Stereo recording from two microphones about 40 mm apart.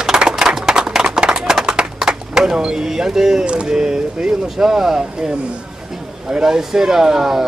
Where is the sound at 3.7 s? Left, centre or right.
Centre.